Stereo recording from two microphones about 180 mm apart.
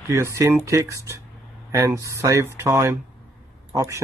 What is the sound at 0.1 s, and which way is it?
Speech, 15° right (ahead or behind).